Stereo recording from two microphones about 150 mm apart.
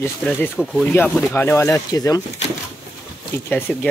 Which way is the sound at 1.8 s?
25° left (ahead or behind).